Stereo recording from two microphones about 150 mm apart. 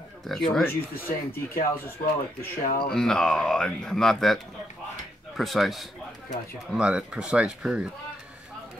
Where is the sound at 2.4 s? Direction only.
70° left (ahead or behind).